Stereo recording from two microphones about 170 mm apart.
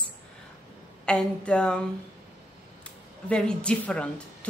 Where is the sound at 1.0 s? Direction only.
5° left (ahead or behind).